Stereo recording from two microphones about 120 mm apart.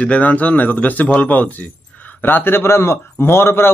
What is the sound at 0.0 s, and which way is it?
A man's voice, 10° left (ahead or behind).